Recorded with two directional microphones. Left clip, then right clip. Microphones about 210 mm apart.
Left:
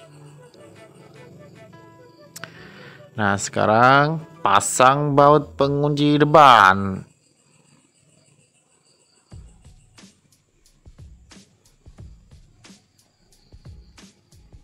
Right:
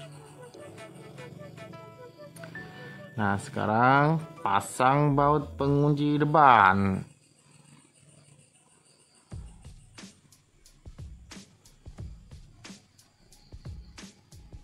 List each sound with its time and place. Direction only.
3.2 s speech: 25° left (ahead or behind)
6.8 s speech: 5° left (ahead or behind)
9.3 s music: centre (ahead or behind)